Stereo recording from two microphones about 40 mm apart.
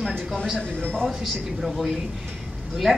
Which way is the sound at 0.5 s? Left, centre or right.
Left.